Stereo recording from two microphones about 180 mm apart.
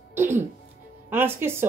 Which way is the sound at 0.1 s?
15° right (ahead or behind).